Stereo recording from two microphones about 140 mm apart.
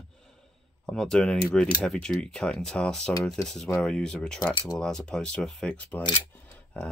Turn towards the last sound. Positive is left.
turn(degrees=10)  # may be behind; listen again after turning